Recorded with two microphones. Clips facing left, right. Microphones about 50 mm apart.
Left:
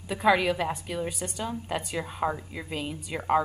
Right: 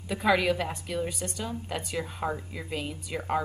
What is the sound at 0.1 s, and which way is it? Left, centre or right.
A woman's voice, centre.